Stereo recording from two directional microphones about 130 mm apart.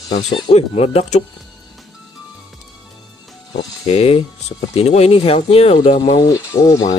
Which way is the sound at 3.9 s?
50° left (ahead or behind).